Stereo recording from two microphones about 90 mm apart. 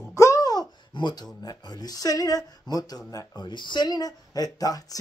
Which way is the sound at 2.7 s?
55° left (ahead or behind).